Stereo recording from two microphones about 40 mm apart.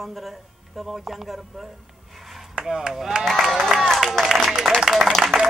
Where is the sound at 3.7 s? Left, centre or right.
Centre.